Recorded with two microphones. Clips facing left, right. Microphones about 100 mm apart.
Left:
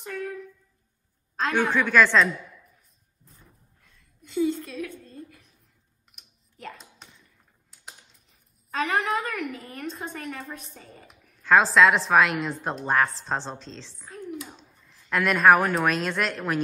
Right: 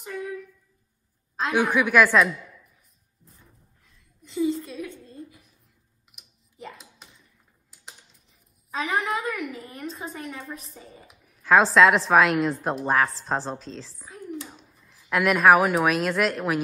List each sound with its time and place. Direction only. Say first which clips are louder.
1.3 s a woman's voice: right 1 dB; 5° right (ahead or behind)
4.2 s a sound: even; centre (ahead or behind)
6.1 s computer keyboard: right 4 dB; 5° right (ahead or behind)
7.7 s speech: left 1 dB; centre (ahead or behind)